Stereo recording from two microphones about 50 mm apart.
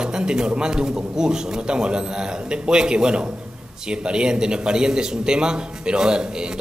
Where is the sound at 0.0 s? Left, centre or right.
Centre.